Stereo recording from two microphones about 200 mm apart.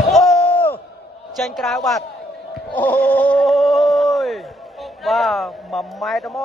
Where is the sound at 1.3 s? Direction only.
Centre (ahead or behind).